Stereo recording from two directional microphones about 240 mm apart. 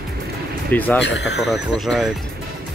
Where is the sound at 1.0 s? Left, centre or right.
Left.